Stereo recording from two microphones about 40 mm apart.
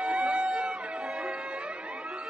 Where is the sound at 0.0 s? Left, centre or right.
Right.